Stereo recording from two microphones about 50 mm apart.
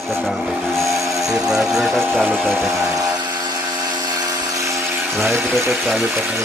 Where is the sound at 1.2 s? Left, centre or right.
Centre.